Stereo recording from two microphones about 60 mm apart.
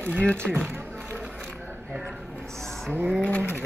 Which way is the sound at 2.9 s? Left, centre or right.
Right.